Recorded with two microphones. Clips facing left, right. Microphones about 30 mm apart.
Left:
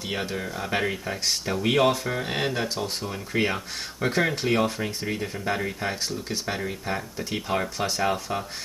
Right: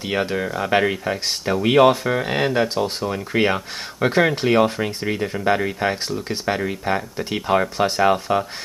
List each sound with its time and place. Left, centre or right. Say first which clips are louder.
0.1 s speech: right 8 dB; right
2.2 s speech: right 7 dB; centre